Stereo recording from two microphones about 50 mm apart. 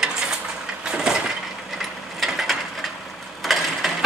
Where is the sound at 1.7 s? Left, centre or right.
Centre.